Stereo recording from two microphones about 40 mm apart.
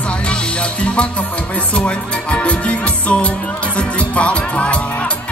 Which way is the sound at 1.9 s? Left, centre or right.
Left.